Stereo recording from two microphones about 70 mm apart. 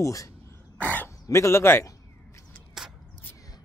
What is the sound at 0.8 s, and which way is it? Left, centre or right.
Throat clearing, left.